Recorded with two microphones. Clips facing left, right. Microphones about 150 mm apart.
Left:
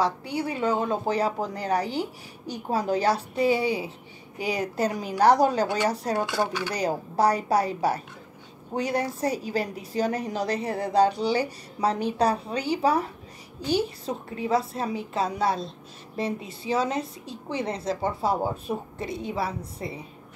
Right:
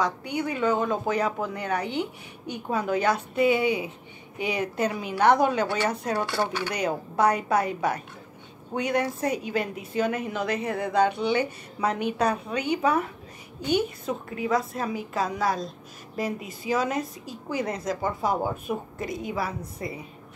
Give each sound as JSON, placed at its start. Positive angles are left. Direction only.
{"t": 0.0, "sound": "a woman's voice", "side_deg": 30}